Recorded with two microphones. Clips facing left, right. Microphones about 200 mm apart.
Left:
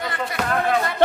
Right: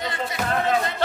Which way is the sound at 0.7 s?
55° left (ahead or behind).